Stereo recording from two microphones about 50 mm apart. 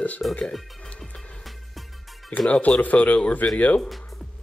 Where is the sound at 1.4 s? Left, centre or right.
Centre.